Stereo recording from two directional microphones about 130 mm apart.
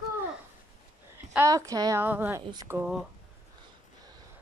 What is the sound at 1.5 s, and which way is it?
Speech, 25° right (ahead or behind).